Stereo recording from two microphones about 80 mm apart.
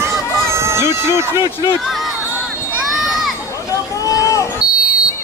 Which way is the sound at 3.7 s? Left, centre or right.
Left.